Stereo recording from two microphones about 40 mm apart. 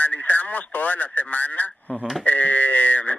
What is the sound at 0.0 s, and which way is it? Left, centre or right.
Speech, left.